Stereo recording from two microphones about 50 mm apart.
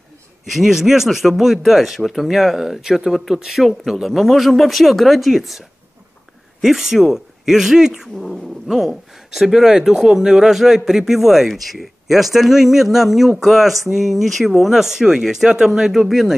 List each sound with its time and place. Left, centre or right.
0.5 s speech: centre